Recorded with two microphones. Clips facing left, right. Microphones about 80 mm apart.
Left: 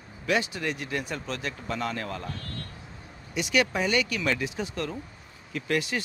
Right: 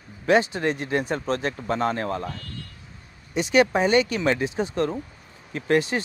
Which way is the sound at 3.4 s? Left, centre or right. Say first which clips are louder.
Right 6 dB; right.